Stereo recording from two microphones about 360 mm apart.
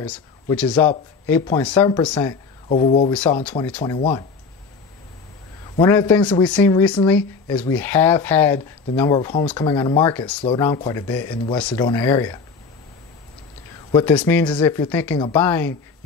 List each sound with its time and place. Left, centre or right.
0.0 s speech: centre
2.7 s speech: centre
3.1 s speech: centre
5.8 s speech: centre
13.9 s speech: centre